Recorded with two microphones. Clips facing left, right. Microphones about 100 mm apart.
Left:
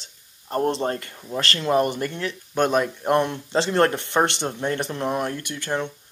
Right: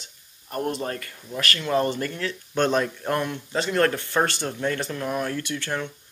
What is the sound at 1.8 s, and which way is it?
Speech, 20° left (ahead or behind).